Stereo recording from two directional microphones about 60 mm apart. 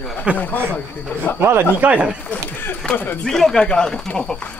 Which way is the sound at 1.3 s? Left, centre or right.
Left.